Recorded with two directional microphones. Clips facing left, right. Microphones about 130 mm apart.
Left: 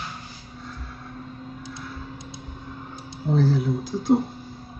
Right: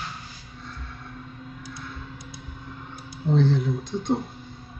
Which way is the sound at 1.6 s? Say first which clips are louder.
Left 2 dB; 25° left (ahead or behind).